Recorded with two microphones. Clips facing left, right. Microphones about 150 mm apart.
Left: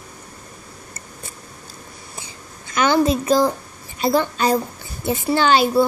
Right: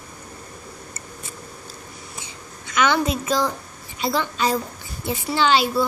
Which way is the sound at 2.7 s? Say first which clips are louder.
Left 4 dB; 35° left (ahead or behind).